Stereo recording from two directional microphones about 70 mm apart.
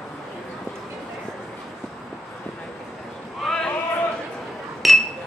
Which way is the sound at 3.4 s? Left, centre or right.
Centre.